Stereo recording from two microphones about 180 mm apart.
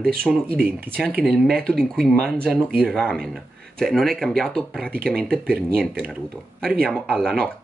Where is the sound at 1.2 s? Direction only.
5° left (ahead or behind).